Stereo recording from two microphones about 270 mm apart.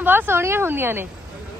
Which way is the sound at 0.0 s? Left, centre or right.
Centre.